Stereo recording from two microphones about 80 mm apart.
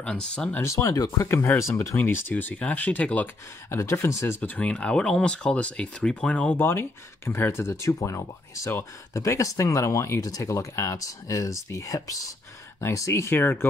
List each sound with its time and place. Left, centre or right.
0.0 s speech: centre
0.7 s speech: left
1.6 s speech: left; by 3.3 s centre
3.7 s speech: left
4.4 s speech: centre
6.5 s speech: left